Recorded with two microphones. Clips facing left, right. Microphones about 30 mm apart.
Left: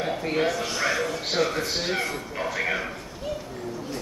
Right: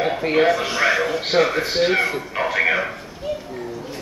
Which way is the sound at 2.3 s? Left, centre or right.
Right.